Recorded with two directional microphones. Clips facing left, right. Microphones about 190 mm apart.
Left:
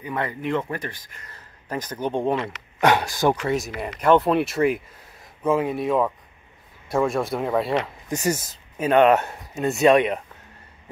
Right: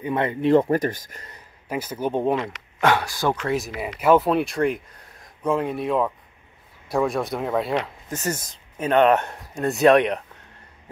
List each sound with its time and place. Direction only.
0.0 s speech: 25° right (ahead or behind); by 1.2 s 45° right (ahead or behind)
1.3 s speech: 10° right (ahead or behind)
2.8 s speech: 20° left (ahead or behind)
3.4 s speech: centre (ahead or behind)
8.1 s speech: 10° left (ahead or behind)